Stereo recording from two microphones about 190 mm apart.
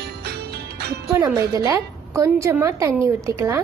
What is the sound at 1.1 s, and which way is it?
A woman's voice, 15° right (ahead or behind).